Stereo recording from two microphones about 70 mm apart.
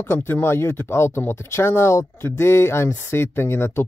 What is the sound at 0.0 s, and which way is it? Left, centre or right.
Speech, left.